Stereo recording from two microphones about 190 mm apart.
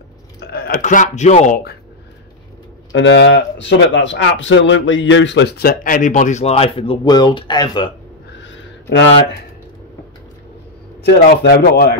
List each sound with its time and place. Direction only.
0.5 s speech: 50° left (ahead or behind)
2.9 s speech: 70° left (ahead or behind); by 7.9 s 20° left (ahead or behind)
8.5 s a sound: 70° left (ahead or behind)
11.1 s speech: 50° left (ahead or behind)